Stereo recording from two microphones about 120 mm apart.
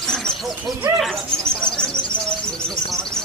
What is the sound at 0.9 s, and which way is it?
Bird, centre (ahead or behind).